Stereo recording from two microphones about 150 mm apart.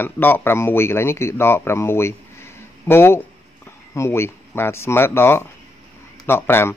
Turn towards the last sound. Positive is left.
turn(degrees=15)  # may be behind; listen again after turning